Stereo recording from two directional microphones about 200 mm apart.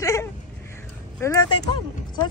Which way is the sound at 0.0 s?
15° left (ahead or behind).